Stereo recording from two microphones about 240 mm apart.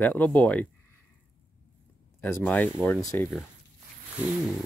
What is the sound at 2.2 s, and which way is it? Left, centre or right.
Speech, centre.